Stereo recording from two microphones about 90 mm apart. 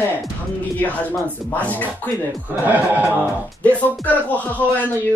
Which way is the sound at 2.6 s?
20° right (ahead or behind).